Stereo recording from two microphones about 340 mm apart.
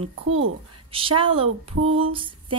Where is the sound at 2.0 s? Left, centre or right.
Centre.